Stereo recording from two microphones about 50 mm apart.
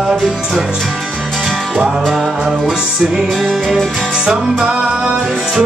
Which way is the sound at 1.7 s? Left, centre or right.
Centre.